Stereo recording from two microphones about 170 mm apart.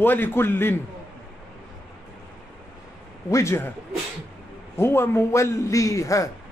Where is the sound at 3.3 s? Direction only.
15° left (ahead or behind).